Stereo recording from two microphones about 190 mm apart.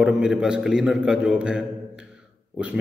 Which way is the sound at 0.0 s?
5° right (ahead or behind).